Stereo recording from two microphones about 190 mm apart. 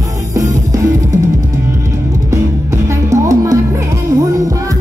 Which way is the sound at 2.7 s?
15° right (ahead or behind).